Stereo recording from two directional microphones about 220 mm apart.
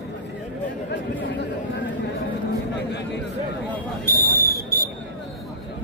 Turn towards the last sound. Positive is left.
turn(degrees=-45)  # may be behind; listen again after turning